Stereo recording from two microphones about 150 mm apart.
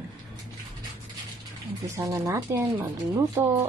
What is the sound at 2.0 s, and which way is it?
Speech, 20° right (ahead or behind).